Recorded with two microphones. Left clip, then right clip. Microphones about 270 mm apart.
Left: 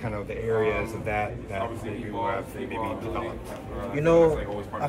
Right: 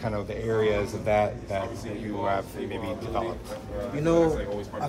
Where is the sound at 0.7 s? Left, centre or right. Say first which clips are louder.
Right 2 dB; right.